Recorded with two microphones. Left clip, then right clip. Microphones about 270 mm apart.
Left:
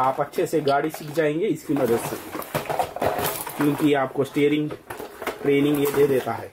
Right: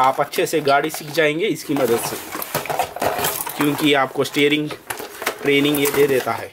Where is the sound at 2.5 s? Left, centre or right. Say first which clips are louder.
Right 3 dB; centre.